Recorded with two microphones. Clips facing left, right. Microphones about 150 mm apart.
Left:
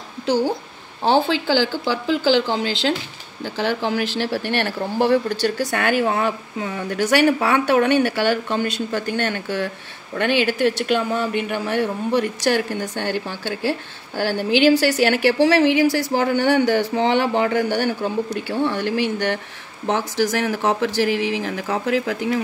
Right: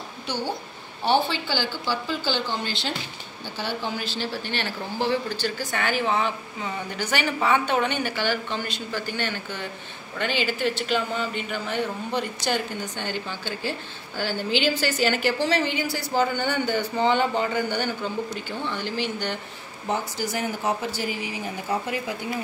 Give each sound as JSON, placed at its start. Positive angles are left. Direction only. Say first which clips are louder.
{"t": 1.1, "sound": "speech", "louder": "left 6 dB", "side_deg": 90}
{"t": 14.1, "sound": "a woman's voice", "louder": "left 6 dB", "side_deg": 60}
{"t": 19.9, "sound": "speech", "louder": "left 7 dB", "side_deg": 90}